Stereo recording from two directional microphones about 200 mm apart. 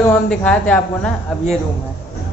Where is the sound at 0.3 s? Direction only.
5° left (ahead or behind).